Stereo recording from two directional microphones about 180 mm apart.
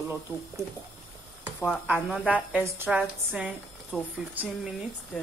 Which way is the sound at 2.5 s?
10° right (ahead or behind).